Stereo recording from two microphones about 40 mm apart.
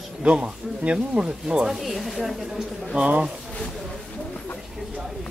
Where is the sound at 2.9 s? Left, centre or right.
Right.